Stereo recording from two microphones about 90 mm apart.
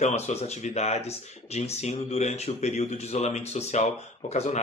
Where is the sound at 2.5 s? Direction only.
90° left.